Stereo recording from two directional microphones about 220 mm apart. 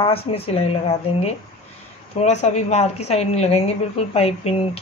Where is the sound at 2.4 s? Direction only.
30° left (ahead or behind).